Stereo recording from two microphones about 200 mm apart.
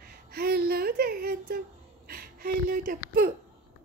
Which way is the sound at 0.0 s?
50° right (ahead or behind).